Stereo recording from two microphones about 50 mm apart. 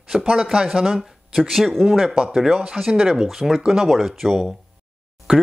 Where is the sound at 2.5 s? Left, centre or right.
Centre.